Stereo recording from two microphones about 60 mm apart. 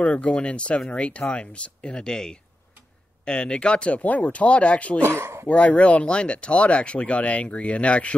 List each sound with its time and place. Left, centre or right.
0.0 s speech: centre
5.0 s speech: right
5.5 s speech: left